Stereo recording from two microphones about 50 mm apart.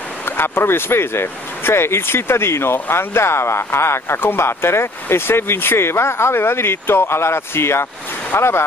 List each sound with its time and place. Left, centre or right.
0.2 s speech: left